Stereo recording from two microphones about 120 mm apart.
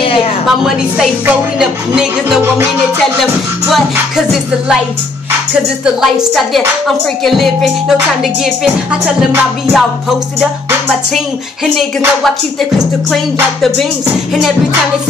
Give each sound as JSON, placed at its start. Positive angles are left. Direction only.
{"t": 0.0, "sound": "a sound", "side_deg": 50}
{"t": 0.7, "sound": "speech", "side_deg": -5}
{"t": 6.3, "sound": "speech", "side_deg": 0}
{"t": 9.0, "sound": "speech", "side_deg": -5}
{"t": 13.1, "sound": "speech", "side_deg": 0}